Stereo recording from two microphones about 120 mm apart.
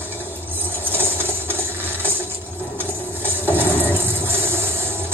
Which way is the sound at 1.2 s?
15° right (ahead or behind).